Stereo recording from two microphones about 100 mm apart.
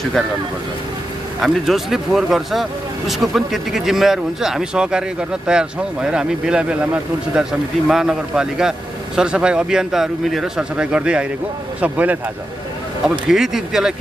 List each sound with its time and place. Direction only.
1.4 s a man's voice: 5° right (ahead or behind)
13.3 s speech: 5° right (ahead or behind)